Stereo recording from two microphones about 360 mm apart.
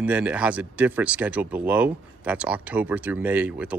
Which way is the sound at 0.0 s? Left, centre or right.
Centre.